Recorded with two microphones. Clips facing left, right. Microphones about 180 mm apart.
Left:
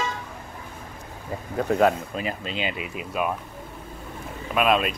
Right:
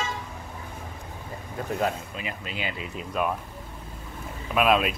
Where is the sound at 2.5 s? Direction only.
20° left (ahead or behind).